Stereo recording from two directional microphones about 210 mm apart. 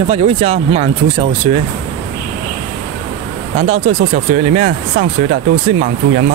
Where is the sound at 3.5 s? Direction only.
30° right (ahead or behind).